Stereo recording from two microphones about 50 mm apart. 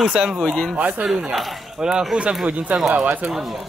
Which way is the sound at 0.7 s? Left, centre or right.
Right.